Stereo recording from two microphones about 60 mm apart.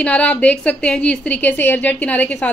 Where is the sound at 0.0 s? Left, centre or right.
Left.